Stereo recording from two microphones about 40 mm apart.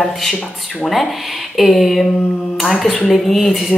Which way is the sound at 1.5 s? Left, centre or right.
Centre.